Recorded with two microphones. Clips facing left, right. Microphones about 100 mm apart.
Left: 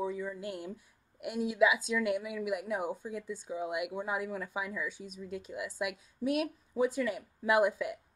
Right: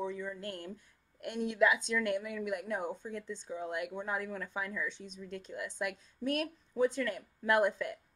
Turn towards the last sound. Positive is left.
turn(degrees=5)  # may be behind; listen again after turning